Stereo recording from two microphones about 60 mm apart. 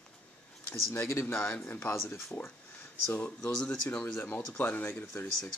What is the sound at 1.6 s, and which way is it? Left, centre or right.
Speech, left.